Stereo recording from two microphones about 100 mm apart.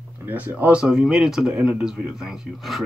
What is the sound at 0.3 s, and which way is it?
Speech, 20° right (ahead or behind).